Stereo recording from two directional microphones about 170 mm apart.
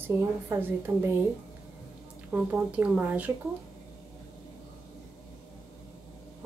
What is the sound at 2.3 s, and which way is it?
A woman's voice, 10° right (ahead or behind).